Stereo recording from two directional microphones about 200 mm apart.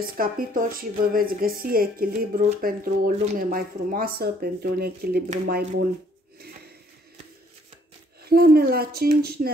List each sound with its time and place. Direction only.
0.0 s speech: 45° right (ahead or behind)
8.2 s speech: 50° right (ahead or behind)